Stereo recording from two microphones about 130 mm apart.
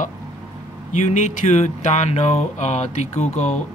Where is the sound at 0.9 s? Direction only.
70° left (ahead or behind).